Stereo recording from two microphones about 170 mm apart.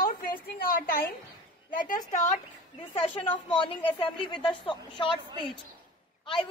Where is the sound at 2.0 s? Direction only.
45° left (ahead or behind).